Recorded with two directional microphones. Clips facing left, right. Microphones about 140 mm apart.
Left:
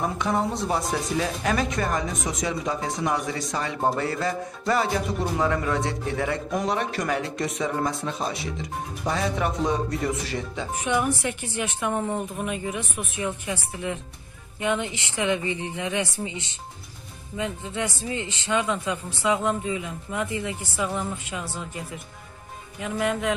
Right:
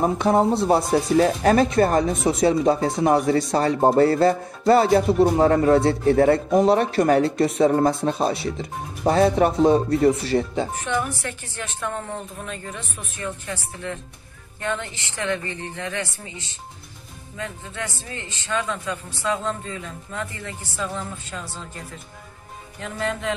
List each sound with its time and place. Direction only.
0.0 s speech: 35° right (ahead or behind)
10.8 s speech: 15° left (ahead or behind)